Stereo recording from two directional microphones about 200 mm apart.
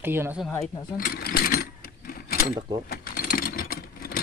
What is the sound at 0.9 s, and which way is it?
Sewing machine, 45° left (ahead or behind).